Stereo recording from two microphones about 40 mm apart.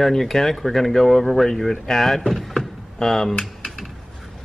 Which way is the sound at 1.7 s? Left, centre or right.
Centre.